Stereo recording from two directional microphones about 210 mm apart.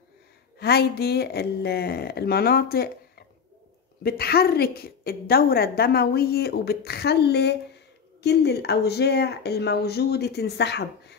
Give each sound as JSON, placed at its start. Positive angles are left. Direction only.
{"t": 0.6, "sound": "a woman's voice", "side_deg": 50}